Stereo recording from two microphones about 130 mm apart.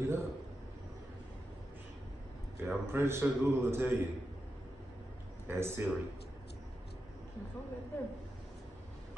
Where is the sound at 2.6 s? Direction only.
20° right (ahead or behind).